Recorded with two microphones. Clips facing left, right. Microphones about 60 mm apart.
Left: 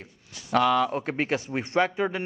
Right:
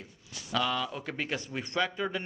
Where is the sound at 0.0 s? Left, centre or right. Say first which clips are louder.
Left 1 dB; left.